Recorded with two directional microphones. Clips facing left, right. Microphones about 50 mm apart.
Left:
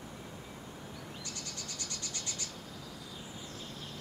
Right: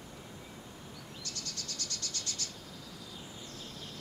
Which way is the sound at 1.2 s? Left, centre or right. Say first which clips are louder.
Even; centre.